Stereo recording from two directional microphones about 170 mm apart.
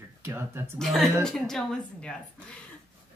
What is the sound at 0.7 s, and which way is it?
Speech, centre (ahead or behind).